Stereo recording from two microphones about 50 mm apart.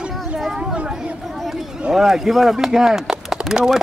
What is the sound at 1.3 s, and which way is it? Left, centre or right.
Chatter, centre.